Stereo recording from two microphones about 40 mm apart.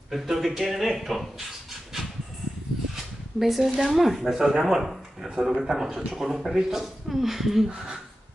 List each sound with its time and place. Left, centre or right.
0.1 s speech: centre
3.3 s speech: centre
7.7 s speech: right